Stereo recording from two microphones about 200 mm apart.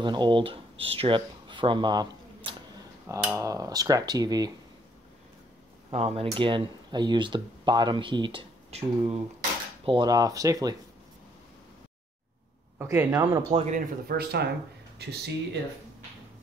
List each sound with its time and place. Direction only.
0.0 s speech: 25° right (ahead or behind)
3.1 s speech: 15° right (ahead or behind)
5.9 s speech: 30° right (ahead or behind)
12.7 s speech: 15° right (ahead or behind)
13.5 s speech: 30° right (ahead or behind)
13.7 s speech: 50° right (ahead or behind)